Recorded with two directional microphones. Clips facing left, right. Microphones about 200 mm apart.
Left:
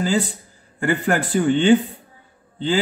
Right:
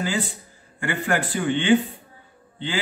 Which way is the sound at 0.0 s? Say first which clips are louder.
Left 5 dB; 40° left (ahead or behind).